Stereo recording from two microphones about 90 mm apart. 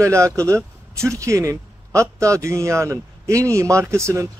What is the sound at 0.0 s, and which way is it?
A man's voice, 35° right (ahead or behind).